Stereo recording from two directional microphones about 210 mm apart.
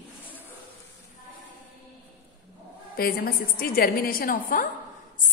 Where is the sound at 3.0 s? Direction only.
45° left (ahead or behind).